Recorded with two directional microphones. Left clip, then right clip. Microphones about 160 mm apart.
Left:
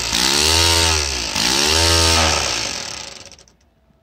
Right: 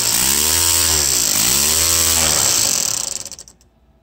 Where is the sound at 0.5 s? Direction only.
40° right (ahead or behind).